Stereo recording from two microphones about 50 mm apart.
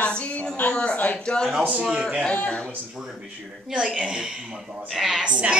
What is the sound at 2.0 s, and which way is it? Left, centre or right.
Speech, right.